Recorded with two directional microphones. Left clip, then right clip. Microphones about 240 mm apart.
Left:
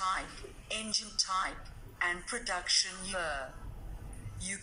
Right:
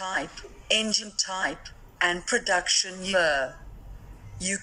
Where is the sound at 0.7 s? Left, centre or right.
Right.